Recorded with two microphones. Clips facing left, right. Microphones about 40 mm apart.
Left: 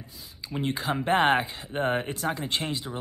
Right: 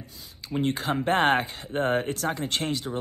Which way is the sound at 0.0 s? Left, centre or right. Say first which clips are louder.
Right 1 dB; right.